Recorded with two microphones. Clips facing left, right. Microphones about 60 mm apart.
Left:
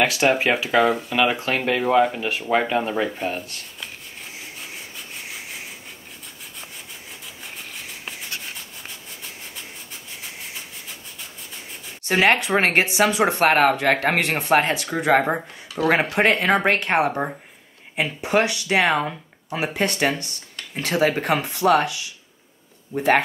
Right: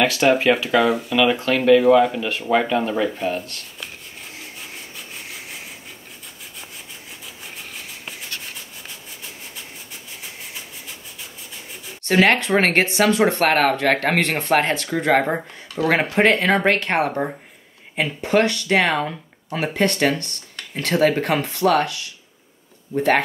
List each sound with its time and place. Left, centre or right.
0.0 s speech: centre
12.0 s speech: centre
16.1 s speech: centre